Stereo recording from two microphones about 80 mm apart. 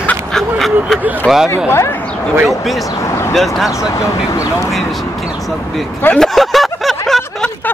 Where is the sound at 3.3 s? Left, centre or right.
Centre.